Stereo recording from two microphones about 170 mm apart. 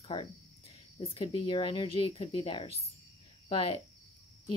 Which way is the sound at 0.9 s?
30° left (ahead or behind).